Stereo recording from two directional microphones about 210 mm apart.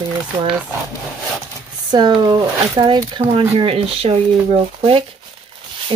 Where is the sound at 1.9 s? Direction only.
20° right (ahead or behind).